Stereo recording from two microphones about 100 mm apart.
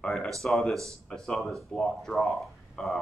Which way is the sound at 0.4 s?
Centre (ahead or behind).